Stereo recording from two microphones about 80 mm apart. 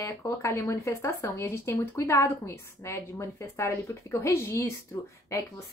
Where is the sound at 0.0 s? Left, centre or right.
Left.